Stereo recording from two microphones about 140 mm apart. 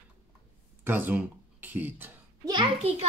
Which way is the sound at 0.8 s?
15° right (ahead or behind).